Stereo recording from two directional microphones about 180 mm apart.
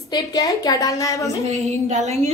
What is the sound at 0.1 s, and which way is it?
Speech, 20° left (ahead or behind).